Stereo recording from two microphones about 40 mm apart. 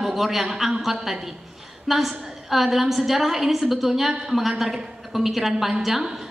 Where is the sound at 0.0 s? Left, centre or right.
Centre.